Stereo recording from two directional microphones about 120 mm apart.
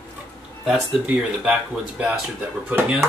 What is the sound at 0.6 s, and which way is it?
Speech, 10° right (ahead or behind).